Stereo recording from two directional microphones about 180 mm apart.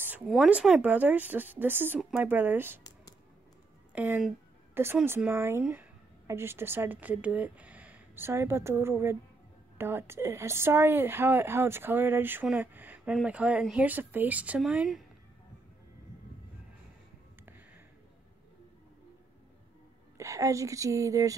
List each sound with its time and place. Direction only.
0.3 s a woman's voice: 5° right (ahead or behind)
3.9 s a woman's voice: 10° right (ahead or behind)
20.2 s speech: 20° right (ahead or behind)